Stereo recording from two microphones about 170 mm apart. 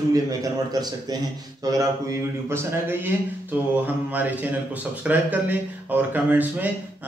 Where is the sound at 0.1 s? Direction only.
20° right (ahead or behind).